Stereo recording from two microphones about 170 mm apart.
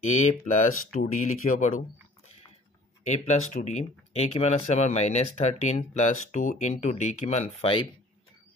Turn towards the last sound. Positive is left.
turn(degrees=35)  # may be behind; listen again after turning